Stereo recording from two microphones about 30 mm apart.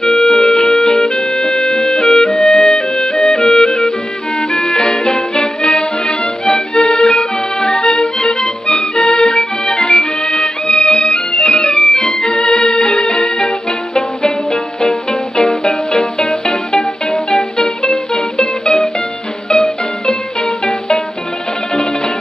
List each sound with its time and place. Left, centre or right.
0.1 s music: left
2.2 s music: centre
2.5 s music: left
3.1 s clarinet: left
3.3 s music: centre
19.5 s music: centre